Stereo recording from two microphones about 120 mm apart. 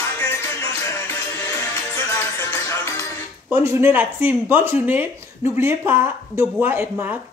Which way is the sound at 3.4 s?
20° right (ahead or behind).